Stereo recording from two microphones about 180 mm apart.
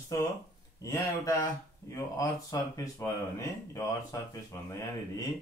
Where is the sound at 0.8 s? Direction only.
15° left (ahead or behind).